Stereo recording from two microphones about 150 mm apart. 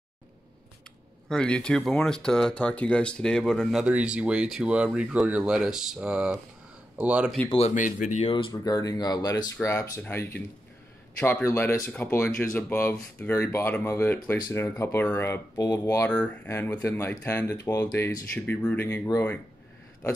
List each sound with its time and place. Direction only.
1.3 s speech: 5° left (ahead or behind)
3.8 s speech: 5° right (ahead or behind)
7.4 s speech: 40° left (ahead or behind)
7.7 s speech: 55° left (ahead or behind)
8.3 s speech: 35° left (ahead or behind); by 19.4 s 15° left (ahead or behind)